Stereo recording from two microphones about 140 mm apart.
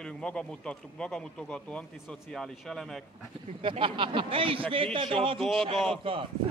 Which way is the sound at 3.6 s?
40° right (ahead or behind).